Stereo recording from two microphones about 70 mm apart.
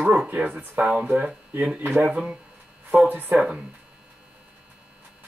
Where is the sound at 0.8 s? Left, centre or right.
Centre.